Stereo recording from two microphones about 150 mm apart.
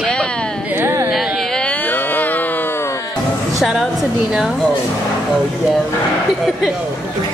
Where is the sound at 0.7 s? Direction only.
15° right (ahead or behind).